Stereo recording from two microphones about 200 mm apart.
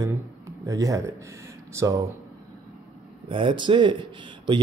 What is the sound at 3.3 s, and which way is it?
Speech, 25° right (ahead or behind).